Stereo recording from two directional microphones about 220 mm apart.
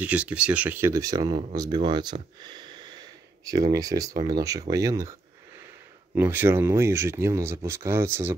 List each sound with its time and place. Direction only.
0.0 s speech: 5° right (ahead or behind)
6.1 s speech: 10° right (ahead or behind)